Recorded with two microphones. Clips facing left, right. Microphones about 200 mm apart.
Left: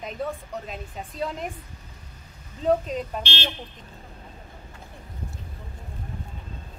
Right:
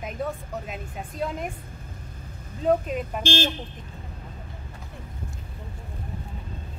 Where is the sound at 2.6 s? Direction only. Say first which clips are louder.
Even; 5° right (ahead or behind).